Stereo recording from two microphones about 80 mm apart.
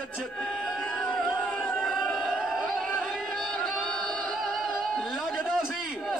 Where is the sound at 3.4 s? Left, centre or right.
Centre.